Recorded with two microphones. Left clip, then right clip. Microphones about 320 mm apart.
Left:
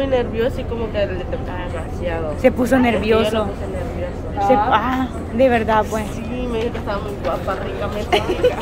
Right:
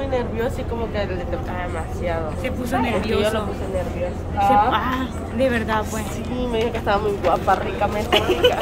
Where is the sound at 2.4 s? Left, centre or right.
Centre.